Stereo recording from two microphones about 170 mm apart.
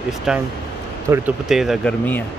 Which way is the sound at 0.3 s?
5° right (ahead or behind).